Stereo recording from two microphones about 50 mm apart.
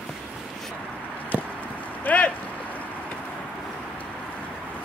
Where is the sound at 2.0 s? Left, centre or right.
Left.